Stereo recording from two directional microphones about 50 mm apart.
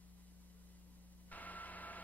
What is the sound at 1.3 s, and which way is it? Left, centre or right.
Radio, left.